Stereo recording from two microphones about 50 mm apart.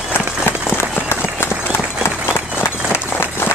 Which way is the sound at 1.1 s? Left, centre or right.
Left.